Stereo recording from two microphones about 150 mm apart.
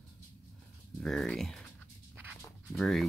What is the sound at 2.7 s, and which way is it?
Speech, centre (ahead or behind).